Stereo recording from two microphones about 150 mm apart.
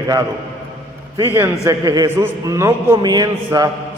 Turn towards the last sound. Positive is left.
turn(degrees=-25)  # may be behind; listen again after turning